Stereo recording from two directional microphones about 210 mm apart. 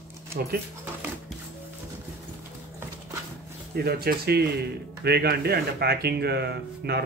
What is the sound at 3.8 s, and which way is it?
Speech, 45° right (ahead or behind).